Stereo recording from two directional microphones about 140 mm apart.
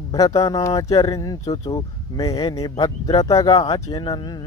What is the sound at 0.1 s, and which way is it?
Speech, 25° left (ahead or behind).